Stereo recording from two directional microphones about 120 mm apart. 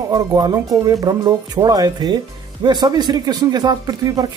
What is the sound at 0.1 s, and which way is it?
Speech, 35° right (ahead or behind).